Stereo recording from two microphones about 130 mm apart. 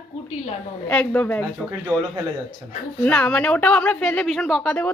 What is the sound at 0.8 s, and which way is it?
Speech, 10° left (ahead or behind).